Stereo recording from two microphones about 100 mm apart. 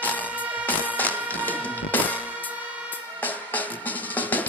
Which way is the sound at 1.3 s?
15° left (ahead or behind).